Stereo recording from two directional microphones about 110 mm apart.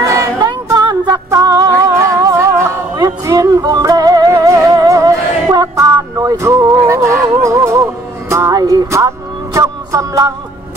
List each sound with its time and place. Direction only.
0.1 s music: 30° right (ahead or behind)